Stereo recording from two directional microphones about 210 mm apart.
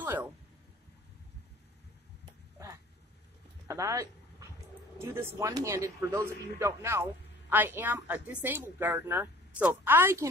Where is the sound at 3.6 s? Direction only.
15° right (ahead or behind).